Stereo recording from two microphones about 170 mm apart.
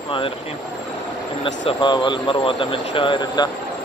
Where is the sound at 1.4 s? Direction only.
30° left (ahead or behind).